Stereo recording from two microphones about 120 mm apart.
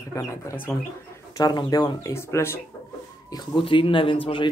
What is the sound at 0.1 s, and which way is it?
Speech, 25° left (ahead or behind).